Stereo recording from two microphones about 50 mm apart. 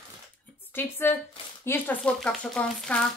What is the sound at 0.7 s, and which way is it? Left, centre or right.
Speech, left.